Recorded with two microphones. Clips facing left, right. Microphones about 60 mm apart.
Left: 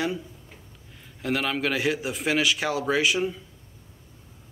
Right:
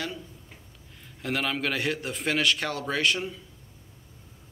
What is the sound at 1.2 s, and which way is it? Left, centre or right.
Speech, centre.